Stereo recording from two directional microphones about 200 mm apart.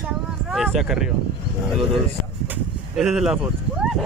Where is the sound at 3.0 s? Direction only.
5° right (ahead or behind).